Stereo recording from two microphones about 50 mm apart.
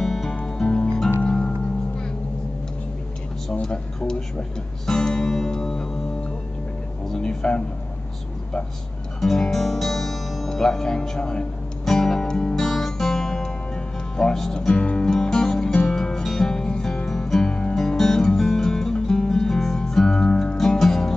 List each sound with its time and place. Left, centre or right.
0.0 s music: centre
3.6 s speech: centre
4.8 s music: centre
7.1 s speech: centre
9.2 s guitar: centre
11.8 s music: centre
12.6 s guitar: centre
14.1 s speech: centre
15.2 s music: centre
17.7 s guitar: centre
20.5 s music: centre